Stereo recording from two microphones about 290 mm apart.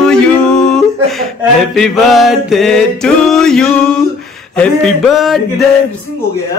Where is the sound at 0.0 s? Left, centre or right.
Centre.